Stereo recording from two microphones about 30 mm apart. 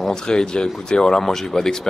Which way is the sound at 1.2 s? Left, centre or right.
Centre.